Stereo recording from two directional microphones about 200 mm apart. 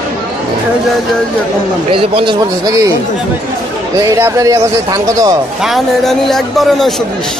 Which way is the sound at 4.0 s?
15° right (ahead or behind).